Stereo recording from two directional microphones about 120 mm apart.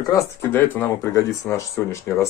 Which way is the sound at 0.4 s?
20° left (ahead or behind).